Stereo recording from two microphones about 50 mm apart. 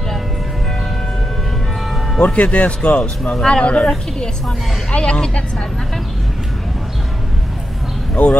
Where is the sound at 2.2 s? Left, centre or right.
Left.